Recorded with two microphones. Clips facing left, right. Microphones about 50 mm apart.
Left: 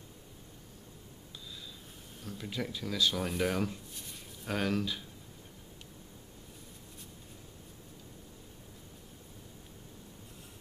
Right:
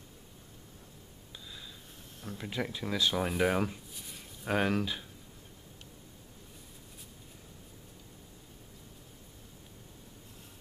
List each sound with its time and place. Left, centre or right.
2.2 s speech: centre
3.9 s a sound: centre
4.5 s speech: right